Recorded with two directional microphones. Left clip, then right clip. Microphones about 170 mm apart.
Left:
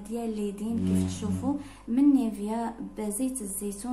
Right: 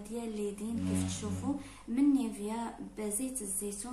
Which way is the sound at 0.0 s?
40° left (ahead or behind).